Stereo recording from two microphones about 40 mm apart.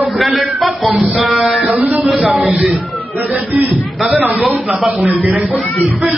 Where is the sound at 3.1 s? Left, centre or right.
Right.